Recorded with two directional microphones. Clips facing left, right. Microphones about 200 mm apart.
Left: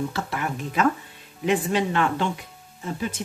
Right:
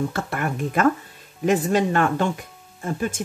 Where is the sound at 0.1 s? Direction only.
50° right (ahead or behind).